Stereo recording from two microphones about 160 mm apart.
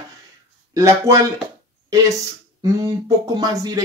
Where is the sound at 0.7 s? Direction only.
20° right (ahead or behind).